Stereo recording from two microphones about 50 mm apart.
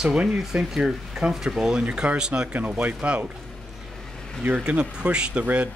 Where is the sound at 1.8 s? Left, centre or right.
Right.